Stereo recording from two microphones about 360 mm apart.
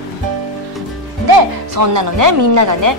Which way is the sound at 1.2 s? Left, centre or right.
Right.